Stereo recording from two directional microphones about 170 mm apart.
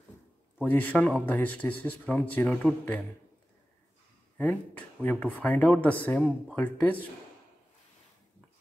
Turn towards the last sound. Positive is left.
turn(degrees=10)  # may be behind; listen again after turning